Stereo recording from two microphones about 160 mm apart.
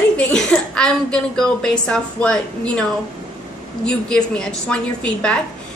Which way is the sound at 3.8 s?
5° left (ahead or behind).